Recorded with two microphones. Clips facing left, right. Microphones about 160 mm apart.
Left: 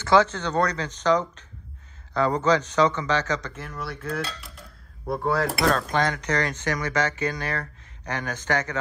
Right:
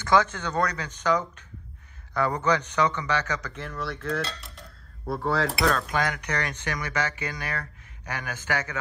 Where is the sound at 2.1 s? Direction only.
15° left (ahead or behind).